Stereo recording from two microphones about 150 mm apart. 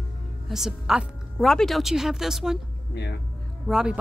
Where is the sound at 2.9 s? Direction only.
90° left.